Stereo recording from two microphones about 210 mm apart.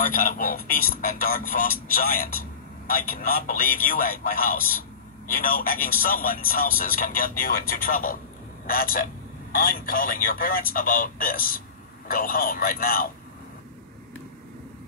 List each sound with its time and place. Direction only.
0.0 s a man's voice: 40° left (ahead or behind)